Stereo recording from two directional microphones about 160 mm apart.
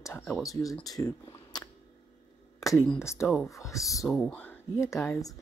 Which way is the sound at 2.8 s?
15° left (ahead or behind).